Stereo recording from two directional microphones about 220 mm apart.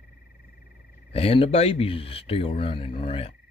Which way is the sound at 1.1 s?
25° left (ahead or behind).